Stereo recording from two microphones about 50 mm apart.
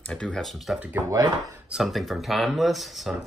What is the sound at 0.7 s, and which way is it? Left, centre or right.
Speech, centre.